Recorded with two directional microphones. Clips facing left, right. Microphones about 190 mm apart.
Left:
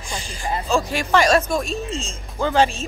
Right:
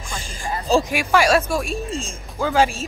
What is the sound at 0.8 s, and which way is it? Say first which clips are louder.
Speech: even; 10° right (ahead or behind).